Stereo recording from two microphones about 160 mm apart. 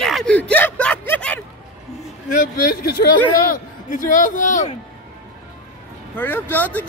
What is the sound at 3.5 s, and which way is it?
A man's voice, 55° left (ahead or behind).